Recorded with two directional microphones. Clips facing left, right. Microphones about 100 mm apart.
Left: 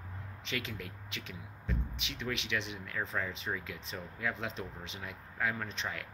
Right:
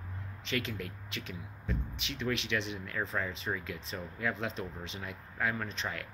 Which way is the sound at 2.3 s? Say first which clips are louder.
Right 2 dB; 35° right (ahead or behind).